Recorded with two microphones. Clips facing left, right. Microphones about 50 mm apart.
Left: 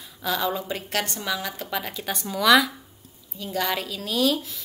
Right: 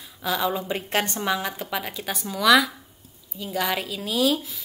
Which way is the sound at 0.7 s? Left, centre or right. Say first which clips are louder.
Right 3 dB; right.